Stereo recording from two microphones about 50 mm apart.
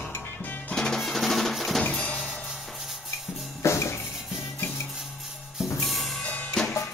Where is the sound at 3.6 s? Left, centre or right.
Left.